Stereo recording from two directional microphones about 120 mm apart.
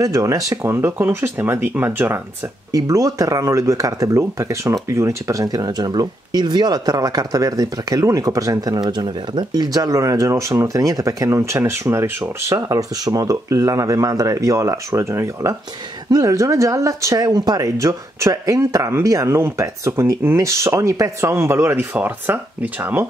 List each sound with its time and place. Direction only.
0.0 s speech: 30° right (ahead or behind)